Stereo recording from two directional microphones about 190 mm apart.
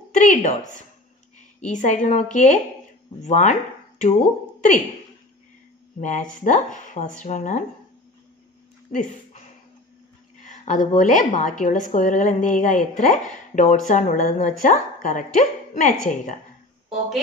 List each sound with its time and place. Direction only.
0.1 s a woman's voice: 40° left (ahead or behind)
5.9 s a woman's voice: 40° left (ahead or behind)
10.4 s a sound: 40° left (ahead or behind)
11.0 s a woman's voice: 40° left (ahead or behind)